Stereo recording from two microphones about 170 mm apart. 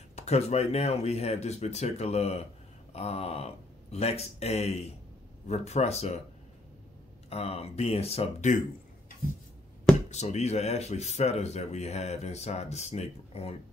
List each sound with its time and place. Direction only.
0.1 s speech: 40° left (ahead or behind)
7.2 s speech: 35° left (ahead or behind)
10.0 s speech: 40° left (ahead or behind)